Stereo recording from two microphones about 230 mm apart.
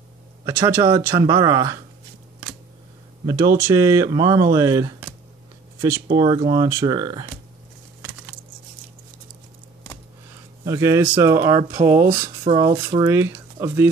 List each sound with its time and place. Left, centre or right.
0.5 s speech: centre
3.3 s speech: centre
10.6 s speech: centre
11.7 s speech: right
12.4 s speech: centre